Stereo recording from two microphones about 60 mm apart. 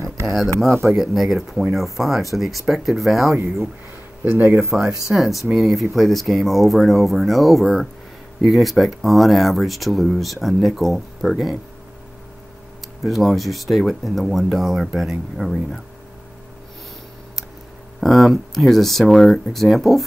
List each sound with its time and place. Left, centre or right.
0.8 s speech: centre
4.2 s speech: right
4.7 s speech: centre
13.0 s speech: centre
18.0 s speech: centre